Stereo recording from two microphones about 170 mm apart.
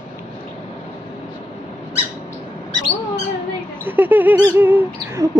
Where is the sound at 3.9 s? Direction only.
10° right (ahead or behind).